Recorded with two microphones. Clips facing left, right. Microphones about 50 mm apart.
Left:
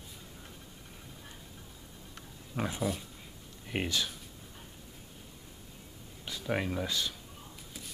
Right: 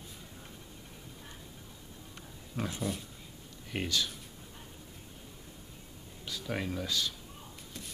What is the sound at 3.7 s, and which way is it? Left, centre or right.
Speech, centre.